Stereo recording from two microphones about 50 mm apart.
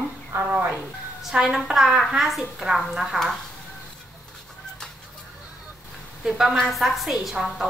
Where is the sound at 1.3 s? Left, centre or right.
Centre.